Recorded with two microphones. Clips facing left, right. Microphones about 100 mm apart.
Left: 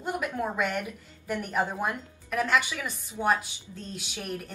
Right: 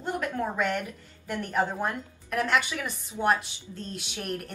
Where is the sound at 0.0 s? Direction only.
10° left (ahead or behind).